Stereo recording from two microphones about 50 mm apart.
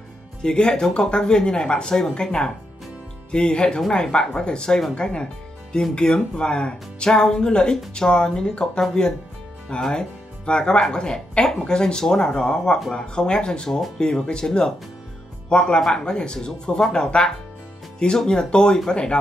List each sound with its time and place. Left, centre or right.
0.4 s speech: centre